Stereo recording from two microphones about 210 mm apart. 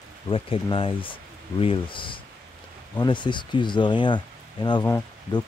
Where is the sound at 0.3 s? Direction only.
25° left (ahead or behind).